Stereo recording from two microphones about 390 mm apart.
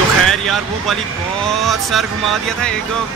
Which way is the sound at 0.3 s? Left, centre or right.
Centre.